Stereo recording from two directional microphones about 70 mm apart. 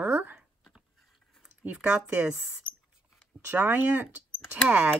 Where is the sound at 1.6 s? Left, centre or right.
Right.